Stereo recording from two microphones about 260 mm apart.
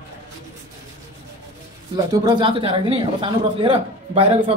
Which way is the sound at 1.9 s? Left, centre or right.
Centre.